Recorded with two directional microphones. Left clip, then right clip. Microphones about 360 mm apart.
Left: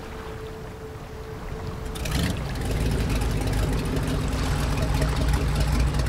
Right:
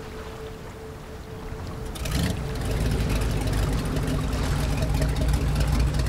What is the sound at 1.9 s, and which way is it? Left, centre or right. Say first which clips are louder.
Vehicle: left 1 dB; centre.